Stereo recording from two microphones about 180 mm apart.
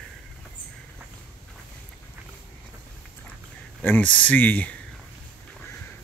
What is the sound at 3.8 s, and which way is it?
Speech, 10° left (ahead or behind).